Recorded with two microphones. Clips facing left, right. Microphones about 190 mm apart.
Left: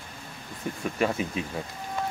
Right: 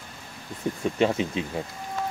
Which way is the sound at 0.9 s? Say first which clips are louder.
Right 3 dB; 25° right (ahead or behind).